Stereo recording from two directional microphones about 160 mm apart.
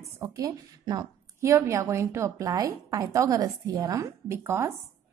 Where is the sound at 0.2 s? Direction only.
20° right (ahead or behind).